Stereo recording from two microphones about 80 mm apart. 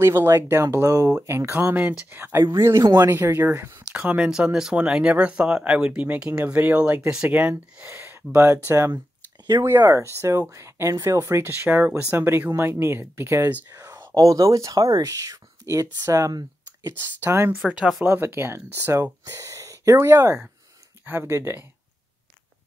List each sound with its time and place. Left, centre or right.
0.0 s speech: right
1.2 s speech: right
4.0 s speech: centre
8.0 s a sound: right
8.6 s speech: right
13.7 s whispering: right
14.1 s speech: right
17.0 s speech: right
17.6 s speech: centre
18.0 s speech: right